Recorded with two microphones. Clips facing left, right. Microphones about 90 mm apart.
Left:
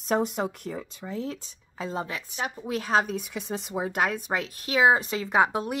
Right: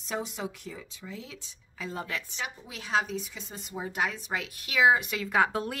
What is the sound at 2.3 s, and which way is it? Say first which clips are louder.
Speech: left 8 dB; 45° left (ahead or behind).